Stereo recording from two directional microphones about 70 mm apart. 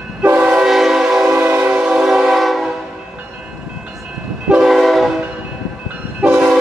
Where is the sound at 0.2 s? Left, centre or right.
Right.